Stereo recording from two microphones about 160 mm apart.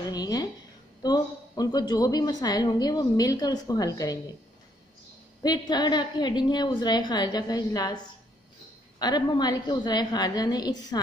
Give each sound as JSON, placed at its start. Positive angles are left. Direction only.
{"t": 0.1, "sound": "a sound", "side_deg": 25}
{"t": 1.0, "sound": "a woman's voice", "side_deg": 25}
{"t": 5.4, "sound": "a woman's voice", "side_deg": 25}
{"t": 9.0, "sound": "a woman's voice", "side_deg": 25}